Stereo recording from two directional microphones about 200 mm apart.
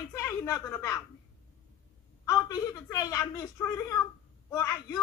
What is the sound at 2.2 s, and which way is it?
A woman's voice, 15° left (ahead or behind).